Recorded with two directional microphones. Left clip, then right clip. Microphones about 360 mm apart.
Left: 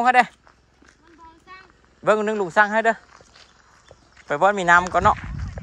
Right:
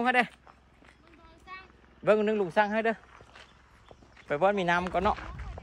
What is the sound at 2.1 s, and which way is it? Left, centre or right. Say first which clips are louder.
Speech: left 5 dB; centre.